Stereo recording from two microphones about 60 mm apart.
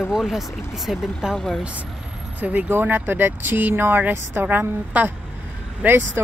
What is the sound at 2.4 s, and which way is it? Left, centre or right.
Speech, right.